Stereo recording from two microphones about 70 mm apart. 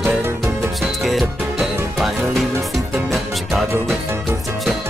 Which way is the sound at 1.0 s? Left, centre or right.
Centre.